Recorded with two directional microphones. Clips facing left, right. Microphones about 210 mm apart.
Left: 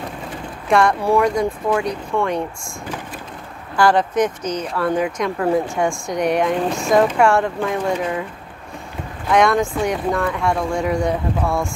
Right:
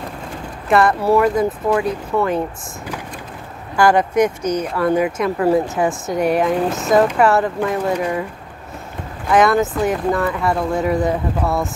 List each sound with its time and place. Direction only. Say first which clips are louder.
0.7 s speech: right 1 dB; 5° right (ahead or behind)
3.7 s speech: right 2 dB; 10° right (ahead or behind)
9.3 s speech: right 1 dB; 5° right (ahead or behind)